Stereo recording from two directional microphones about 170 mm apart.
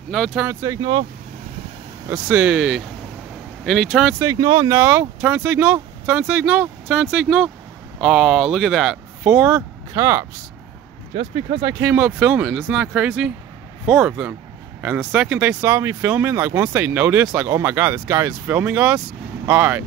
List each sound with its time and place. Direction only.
0.1 s speech: centre (ahead or behind)
0.5 s speech: 20° right (ahead or behind)
2.0 s speech: 10° right (ahead or behind)
4.2 s speech: 25° right (ahead or behind)
11.6 s speech: 10° right (ahead or behind)